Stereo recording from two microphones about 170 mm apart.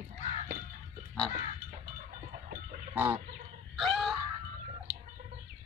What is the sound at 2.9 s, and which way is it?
Fowl, 10° right (ahead or behind).